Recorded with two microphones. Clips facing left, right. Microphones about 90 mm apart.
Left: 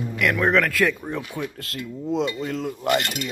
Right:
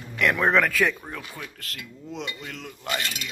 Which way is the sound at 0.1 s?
Centre (ahead or behind).